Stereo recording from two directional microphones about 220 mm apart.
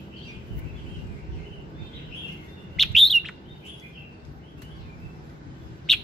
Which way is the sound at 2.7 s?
Centre (ahead or behind).